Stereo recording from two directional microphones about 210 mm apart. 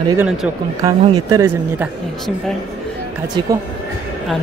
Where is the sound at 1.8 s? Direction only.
Centre (ahead or behind).